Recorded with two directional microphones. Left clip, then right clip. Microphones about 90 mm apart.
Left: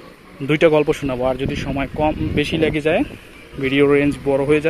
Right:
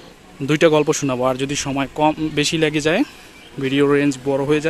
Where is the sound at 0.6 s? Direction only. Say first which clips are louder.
Even; 40° right (ahead or behind).